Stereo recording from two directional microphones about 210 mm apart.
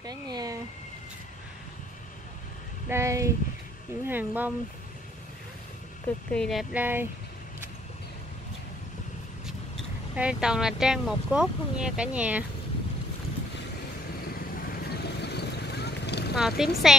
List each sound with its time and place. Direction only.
0.0 s a sound: 20° right (ahead or behind)
2.9 s speech: 15° right (ahead or behind)
6.3 s speech: centre (ahead or behind)
10.1 s speech: 5° right (ahead or behind)
14.7 s vehicle: 50° left (ahead or behind)
16.3 s speech: centre (ahead or behind)